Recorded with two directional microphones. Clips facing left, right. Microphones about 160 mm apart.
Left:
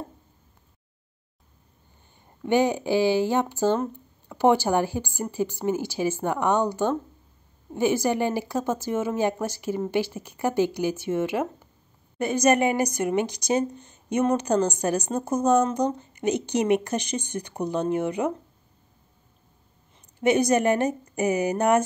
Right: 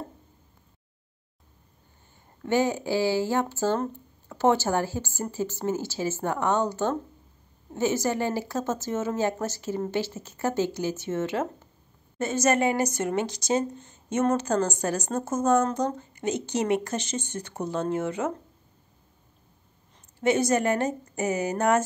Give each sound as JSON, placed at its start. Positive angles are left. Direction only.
{"t": 2.4, "sound": "speech", "side_deg": 15}
{"t": 20.2, "sound": "speech", "side_deg": 15}